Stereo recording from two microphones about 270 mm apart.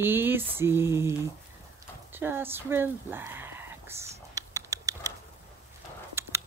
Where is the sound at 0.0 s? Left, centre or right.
Centre.